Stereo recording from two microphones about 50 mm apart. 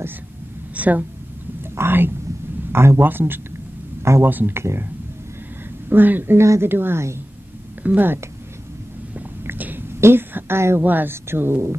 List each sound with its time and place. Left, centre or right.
0.7 s a woman's voice: right
1.6 s speech: right
4.6 s speech: right
5.9 s speech: right
6.3 s speech: right
6.6 s speech: right
7.8 s speech: right
9.6 s a sound: right
9.8 s a sound: right
10.3 s speech: right
10.8 s speech: right
11.2 s speech: right